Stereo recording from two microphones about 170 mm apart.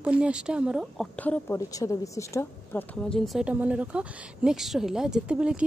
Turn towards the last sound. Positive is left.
turn(degrees=-5)  # may be behind; listen again after turning